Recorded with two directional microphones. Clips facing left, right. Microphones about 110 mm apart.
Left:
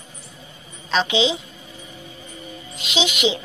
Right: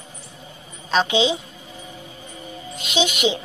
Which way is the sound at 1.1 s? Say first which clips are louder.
Even; 50° right (ahead or behind).